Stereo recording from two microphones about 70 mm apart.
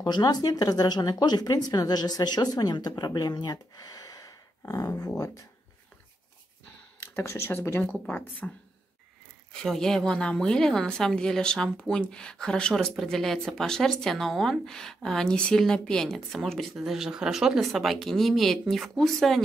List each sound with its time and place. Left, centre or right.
0.0 s speech: left
7.0 s speech: left
9.5 s a woman's voice: centre